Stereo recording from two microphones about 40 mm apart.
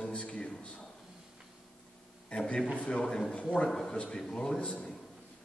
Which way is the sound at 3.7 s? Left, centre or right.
Centre.